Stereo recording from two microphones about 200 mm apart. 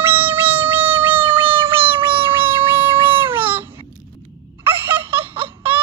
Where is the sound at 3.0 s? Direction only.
10° right (ahead or behind).